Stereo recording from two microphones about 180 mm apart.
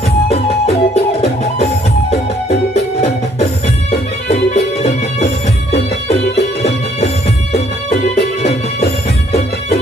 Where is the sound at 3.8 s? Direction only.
35° left (ahead or behind).